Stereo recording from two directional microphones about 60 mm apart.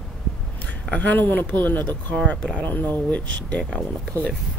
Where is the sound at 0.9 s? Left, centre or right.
Left.